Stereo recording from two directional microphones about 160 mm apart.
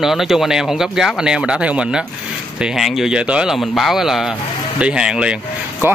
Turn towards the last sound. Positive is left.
turn(degrees=-5)  # may be behind; listen again after turning